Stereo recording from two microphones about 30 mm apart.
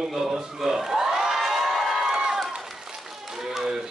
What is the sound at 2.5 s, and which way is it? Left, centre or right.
Applause, centre.